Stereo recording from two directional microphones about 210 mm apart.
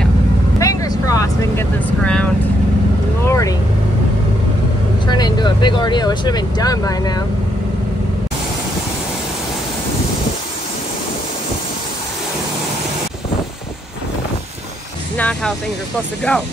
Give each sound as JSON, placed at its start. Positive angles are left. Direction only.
{"t": 0.6, "sound": "vehicle", "side_deg": 15}
{"t": 3.3, "sound": "vehicle", "side_deg": 15}
{"t": 5.0, "sound": "vehicle", "side_deg": 20}
{"t": 15.1, "sound": "music", "side_deg": 5}
{"t": 16.3, "sound": "speech", "side_deg": 5}